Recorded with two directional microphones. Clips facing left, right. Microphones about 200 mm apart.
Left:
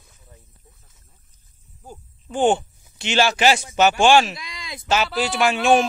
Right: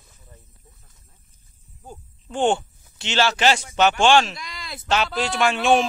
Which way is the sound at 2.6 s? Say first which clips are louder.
Left 3 dB; 15° left (ahead or behind).